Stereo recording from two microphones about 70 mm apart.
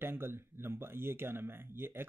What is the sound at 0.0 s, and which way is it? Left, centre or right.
Speech, right.